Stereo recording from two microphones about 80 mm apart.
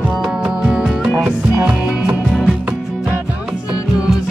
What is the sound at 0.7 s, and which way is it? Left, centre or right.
Music, centre.